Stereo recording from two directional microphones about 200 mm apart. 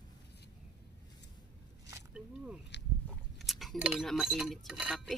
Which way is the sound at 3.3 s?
Centre (ahead or behind).